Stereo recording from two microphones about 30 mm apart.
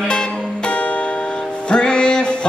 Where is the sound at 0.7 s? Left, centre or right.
Left.